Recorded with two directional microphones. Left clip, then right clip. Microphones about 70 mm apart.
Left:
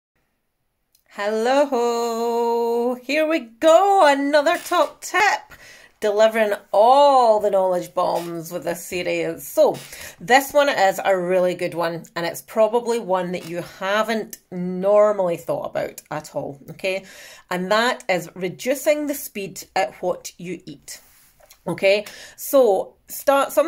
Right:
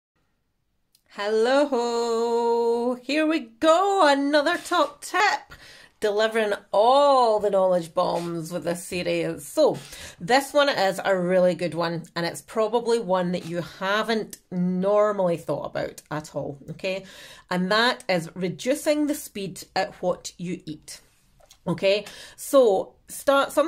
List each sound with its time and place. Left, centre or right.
1.1 s a sound: centre
3.9 s speech: centre
10.3 s a woman's voice: centre; by 19.2 s right
19.3 s speech: centre
21.6 s a sound: centre
22.4 s speech: right